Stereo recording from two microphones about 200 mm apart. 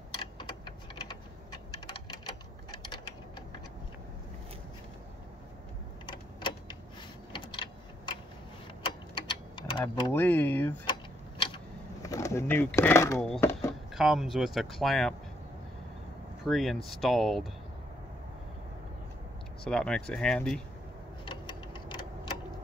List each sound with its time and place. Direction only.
0.2 s typing: 20° left (ahead or behind)
6.0 s typing: 25° left (ahead or behind)
7.3 s a sound: 25° left (ahead or behind)
9.3 s vehicle: 25° left (ahead or behind)
10.1 s speech: 10° left (ahead or behind)
10.9 s a sound: 25° left (ahead or behind)
13.9 s speech: centre (ahead or behind)
16.4 s speech: centre (ahead or behind)
19.6 s speech: 5° left (ahead or behind)
21.3 s vehicle: 25° left (ahead or behind)